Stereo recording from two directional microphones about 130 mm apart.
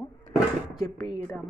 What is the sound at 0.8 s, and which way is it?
Speech, 35° left (ahead or behind).